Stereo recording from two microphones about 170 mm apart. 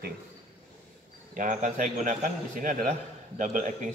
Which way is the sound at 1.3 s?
50° right (ahead or behind).